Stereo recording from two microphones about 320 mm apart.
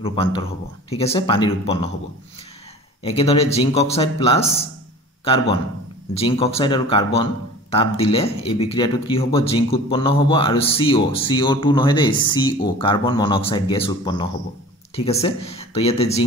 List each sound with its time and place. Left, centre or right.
0.0 s speech: centre
3.0 s speech: centre